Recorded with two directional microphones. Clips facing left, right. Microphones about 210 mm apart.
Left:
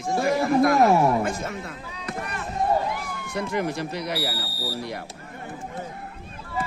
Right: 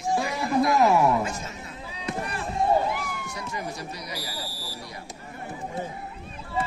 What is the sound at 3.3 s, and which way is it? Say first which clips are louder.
Speech: left 11 dB; 60° left (ahead or behind).